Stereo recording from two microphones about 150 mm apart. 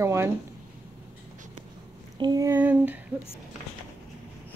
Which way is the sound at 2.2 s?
25° right (ahead or behind).